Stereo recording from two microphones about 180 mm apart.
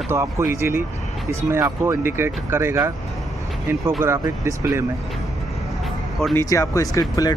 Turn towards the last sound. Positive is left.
turn(degrees=20)  # may be behind; listen again after turning